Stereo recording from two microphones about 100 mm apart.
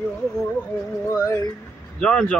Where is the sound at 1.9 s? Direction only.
10° left (ahead or behind).